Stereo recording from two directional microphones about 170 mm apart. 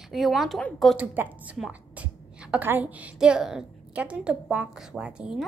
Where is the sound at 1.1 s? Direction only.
10° right (ahead or behind).